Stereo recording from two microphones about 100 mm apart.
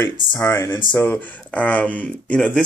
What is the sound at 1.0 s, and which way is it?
Speech, 20° left (ahead or behind).